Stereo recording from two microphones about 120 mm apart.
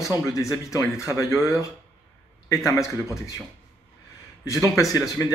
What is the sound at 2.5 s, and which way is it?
Speech, 25° left (ahead or behind).